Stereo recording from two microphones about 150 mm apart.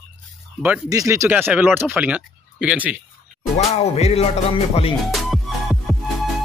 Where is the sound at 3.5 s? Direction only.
45° left (ahead or behind).